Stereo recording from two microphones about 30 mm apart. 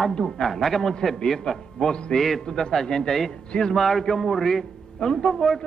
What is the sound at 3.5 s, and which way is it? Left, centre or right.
Speech, left.